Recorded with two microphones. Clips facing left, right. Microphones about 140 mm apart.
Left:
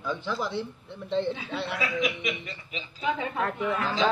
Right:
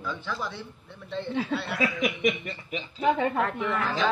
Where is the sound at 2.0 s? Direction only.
50° right (ahead or behind).